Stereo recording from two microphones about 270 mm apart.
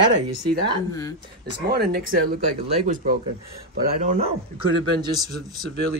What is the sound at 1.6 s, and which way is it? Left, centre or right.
Speech, right.